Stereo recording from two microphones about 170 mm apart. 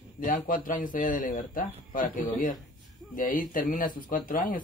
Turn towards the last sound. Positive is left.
turn(degrees=55)  # may be behind; listen again after turning